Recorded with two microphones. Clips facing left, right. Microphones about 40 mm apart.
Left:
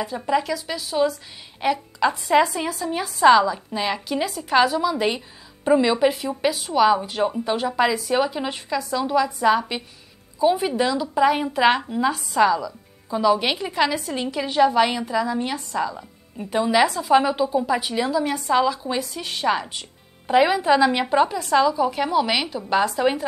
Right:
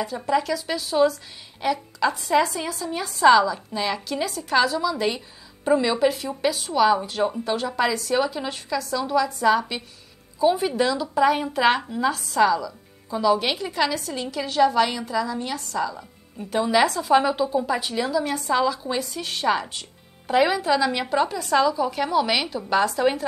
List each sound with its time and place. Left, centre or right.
0.0 s speech: centre
1.6 s speech: centre
16.5 s speech: centre
21.4 s speech: centre